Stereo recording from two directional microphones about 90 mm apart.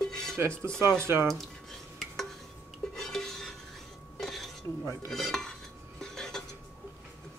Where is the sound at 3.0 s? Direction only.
5° left (ahead or behind).